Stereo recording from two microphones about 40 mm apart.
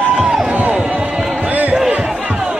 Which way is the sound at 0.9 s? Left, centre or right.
Centre.